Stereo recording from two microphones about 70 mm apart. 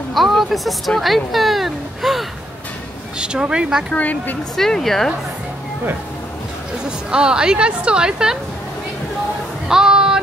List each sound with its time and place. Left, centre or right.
0.1 s speech: centre
3.2 s a woman's voice: centre
3.9 s speech: left
4.6 s a woman's voice: centre
7.1 s a woman's voice: centre
9.7 s child singing: centre